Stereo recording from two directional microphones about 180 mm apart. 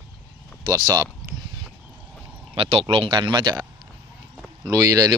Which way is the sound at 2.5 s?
30° right (ahead or behind).